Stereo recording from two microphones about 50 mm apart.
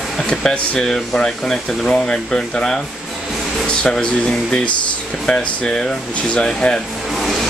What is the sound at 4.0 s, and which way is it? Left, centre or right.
Speech, centre.